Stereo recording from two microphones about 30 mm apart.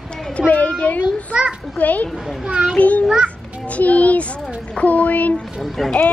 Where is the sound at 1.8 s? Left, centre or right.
Left.